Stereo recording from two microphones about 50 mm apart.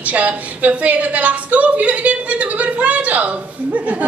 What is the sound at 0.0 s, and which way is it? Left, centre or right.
A woman's voice, right.